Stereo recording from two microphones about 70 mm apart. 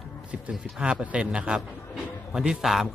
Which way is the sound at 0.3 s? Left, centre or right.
Centre.